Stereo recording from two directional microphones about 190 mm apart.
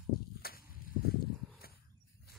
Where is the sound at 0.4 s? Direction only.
50° left (ahead or behind).